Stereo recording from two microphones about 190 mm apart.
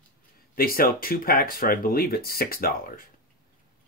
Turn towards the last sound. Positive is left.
turn(degrees=50)  # may be behind; listen again after turning